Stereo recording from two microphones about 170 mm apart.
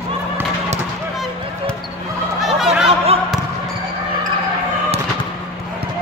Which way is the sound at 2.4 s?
Centre (ahead or behind).